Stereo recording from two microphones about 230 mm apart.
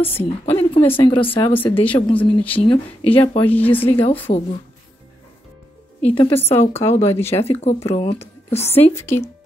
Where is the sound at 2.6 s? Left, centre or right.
Left.